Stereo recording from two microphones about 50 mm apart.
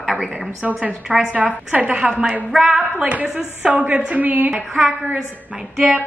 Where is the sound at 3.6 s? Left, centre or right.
Right.